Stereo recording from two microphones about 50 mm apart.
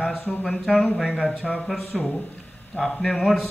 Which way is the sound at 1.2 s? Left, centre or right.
Centre.